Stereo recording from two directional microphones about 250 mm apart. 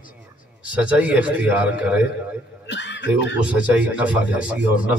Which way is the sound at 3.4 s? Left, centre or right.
Centre.